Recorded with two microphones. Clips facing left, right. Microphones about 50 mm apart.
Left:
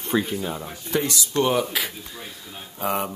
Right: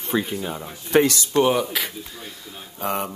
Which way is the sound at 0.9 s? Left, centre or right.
Right.